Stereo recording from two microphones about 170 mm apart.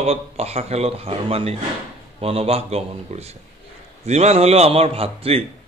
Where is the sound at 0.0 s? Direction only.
40° right (ahead or behind).